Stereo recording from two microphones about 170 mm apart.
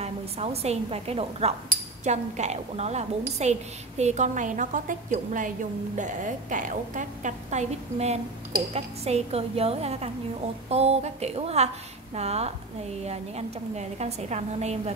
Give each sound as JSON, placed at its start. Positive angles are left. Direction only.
{"t": 0.0, "sound": "a woman's voice", "side_deg": -35}